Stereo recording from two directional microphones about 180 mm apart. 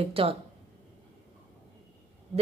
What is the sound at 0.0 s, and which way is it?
Speech, 30° right (ahead or behind).